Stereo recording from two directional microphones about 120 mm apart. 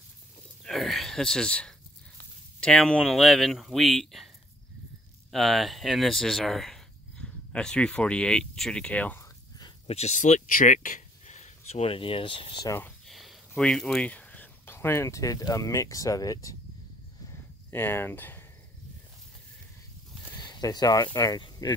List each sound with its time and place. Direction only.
0.7 s speech: centre (ahead or behind)
5.3 s speech: centre (ahead or behind)
9.8 s speech: 65° left (ahead or behind); by 12.5 s 45° left (ahead or behind)
13.0 s speech: centre (ahead or behind); by 16.5 s 30° left (ahead or behind)
17.3 s a sound: 20° left (ahead or behind)
20.3 s speech: 35° left (ahead or behind)